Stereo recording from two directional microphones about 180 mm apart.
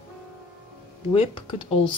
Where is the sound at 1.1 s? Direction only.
25° left (ahead or behind).